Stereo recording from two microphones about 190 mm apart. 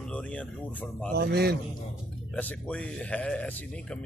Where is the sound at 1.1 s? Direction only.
60° right (ahead or behind).